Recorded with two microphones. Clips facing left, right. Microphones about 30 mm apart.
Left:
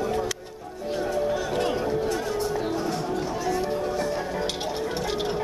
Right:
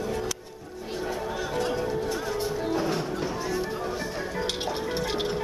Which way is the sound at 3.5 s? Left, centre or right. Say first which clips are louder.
Left 4 dB; centre.